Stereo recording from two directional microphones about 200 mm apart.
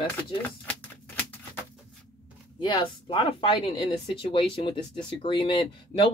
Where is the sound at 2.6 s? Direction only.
25° left (ahead or behind).